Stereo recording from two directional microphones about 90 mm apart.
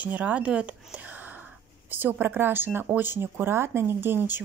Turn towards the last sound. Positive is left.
turn(degrees=-25)  # may be behind; listen again after turning